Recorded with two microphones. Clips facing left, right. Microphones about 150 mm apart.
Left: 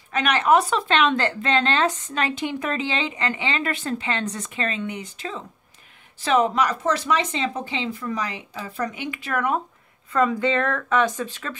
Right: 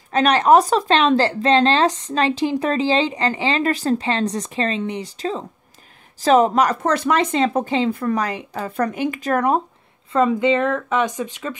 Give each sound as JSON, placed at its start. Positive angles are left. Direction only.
{"t": 0.1, "sound": "speech", "side_deg": -35}
{"t": 10.1, "sound": "speech", "side_deg": -25}